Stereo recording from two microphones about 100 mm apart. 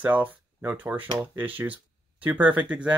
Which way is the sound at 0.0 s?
15° right (ahead or behind).